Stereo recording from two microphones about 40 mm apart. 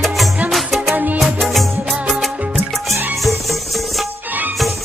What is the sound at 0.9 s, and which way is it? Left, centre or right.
Music, right.